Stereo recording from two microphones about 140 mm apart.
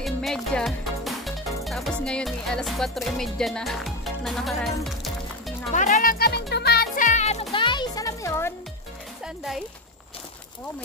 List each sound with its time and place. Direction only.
0.0 s speech: centre (ahead or behind)
5.8 s speech: 65° left (ahead or behind); by 6.3 s 85° left
6.8 s music: 65° left (ahead or behind)
7.5 s music: 35° left (ahead or behind); by 8.5 s 20° left (ahead or behind)
9.2 s speech: 5° right (ahead or behind)